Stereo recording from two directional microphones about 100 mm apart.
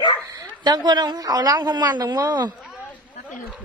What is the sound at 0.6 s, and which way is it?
A woman's voice, 45° right (ahead or behind).